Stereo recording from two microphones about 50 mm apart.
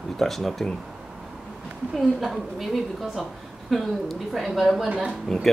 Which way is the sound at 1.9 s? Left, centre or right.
Centre.